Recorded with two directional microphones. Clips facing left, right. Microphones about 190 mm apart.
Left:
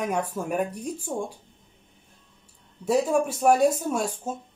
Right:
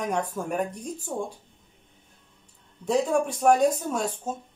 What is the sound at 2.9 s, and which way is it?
Speech, 5° left (ahead or behind).